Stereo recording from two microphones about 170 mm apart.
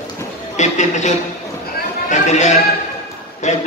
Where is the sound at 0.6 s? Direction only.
45° left (ahead or behind).